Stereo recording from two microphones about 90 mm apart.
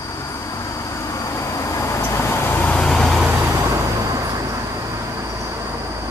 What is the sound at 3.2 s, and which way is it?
Vehicle, 10° right (ahead or behind).